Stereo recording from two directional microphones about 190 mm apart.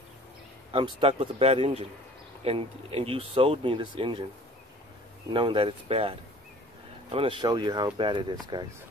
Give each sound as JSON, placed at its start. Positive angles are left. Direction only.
{"t": 0.7, "sound": "speech", "side_deg": -30}
{"t": 5.3, "sound": "speech", "side_deg": -25}